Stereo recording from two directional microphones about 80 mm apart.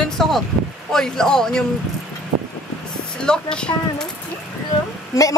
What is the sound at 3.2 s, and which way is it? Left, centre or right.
Speech, centre.